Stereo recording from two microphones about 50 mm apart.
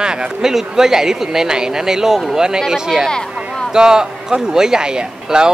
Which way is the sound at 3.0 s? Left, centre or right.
Centre.